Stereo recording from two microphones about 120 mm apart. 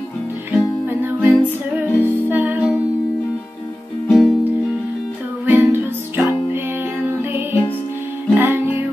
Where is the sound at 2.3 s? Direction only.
15° right (ahead or behind).